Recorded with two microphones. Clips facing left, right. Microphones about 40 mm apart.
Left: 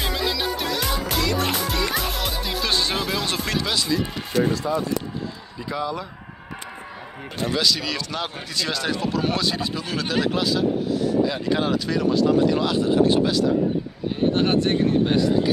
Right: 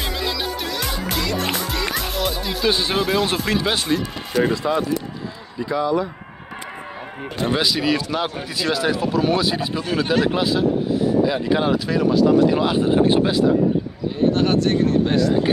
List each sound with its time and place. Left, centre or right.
0.0 s music: centre
2.7 s speech: centre
3.9 s speech: right
4.5 s speech: right
5.6 s speech: centre
7.6 s speech: centre
12.4 s speech: centre
14.3 s speech: centre